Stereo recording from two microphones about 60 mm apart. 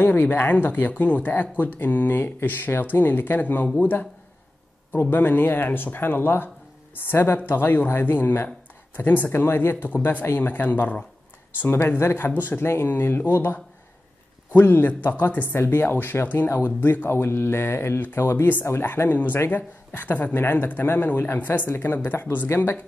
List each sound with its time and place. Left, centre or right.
0.0 s speech: left
5.1 s speech: left
12.0 s speech: left
18.7 s speech: left
19.0 s speech: left